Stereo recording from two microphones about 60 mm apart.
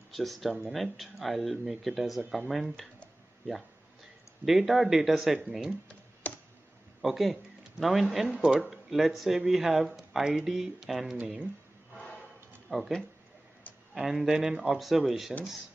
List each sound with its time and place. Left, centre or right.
0.1 s speech: centre
4.5 s speech: centre
7.0 s speech: centre
11.9 s a sound: centre
12.6 s speech: centre